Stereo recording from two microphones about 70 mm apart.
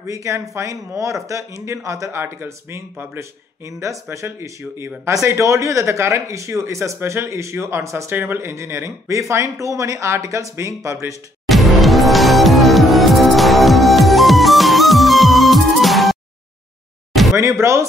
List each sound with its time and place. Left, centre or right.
0.0 s speech: right
11.4 s music: centre
17.1 s a sound: centre
17.4 s speech: right